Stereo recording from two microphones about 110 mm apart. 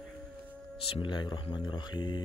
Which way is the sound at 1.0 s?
45° left (ahead or behind).